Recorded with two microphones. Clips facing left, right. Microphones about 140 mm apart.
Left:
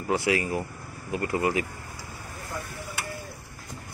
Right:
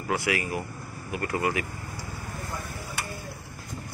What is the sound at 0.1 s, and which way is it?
Speech, 25° left (ahead or behind).